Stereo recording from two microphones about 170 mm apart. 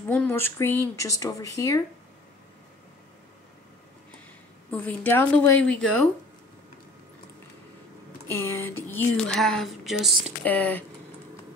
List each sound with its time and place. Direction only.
0.1 s speech: 10° left (ahead or behind)
4.6 s speech: 10° left (ahead or behind)
8.3 s speech: 15° left (ahead or behind)
9.3 s speech: centre (ahead or behind)